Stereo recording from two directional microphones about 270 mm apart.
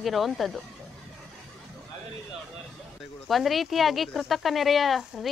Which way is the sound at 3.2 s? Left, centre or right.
Centre.